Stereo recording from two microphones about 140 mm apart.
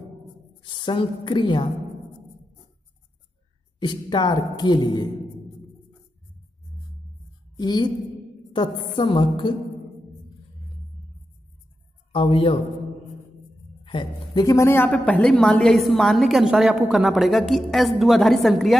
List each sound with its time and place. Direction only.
0.7 s a woman's voice: 35° left (ahead or behind)
3.8 s a woman's voice: 35° left (ahead or behind)
7.5 s a woman's voice: 30° left (ahead or behind)
12.1 s a woman's voice: 40° left (ahead or behind)
13.8 s a woman's voice: 35° left (ahead or behind); by 18.8 s centre (ahead or behind)